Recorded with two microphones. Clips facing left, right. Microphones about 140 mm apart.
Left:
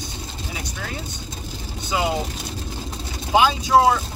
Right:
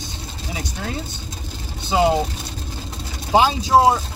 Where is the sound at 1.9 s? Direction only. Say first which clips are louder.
Right 6 dB; 30° right (ahead or behind).